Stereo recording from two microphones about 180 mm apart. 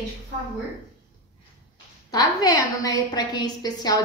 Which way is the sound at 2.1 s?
20° left (ahead or behind).